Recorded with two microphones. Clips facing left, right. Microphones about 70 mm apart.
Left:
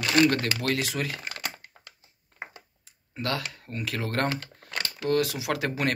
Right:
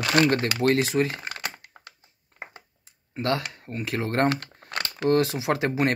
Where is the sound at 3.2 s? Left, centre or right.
Right.